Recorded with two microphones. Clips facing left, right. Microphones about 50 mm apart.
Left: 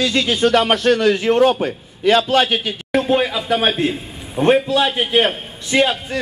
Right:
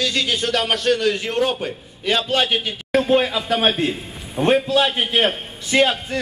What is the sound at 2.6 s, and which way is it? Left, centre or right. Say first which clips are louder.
Speech: left 1 dB; left.